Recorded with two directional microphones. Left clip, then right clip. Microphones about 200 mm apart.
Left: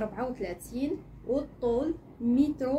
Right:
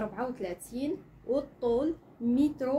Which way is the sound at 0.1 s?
20° right (ahead or behind).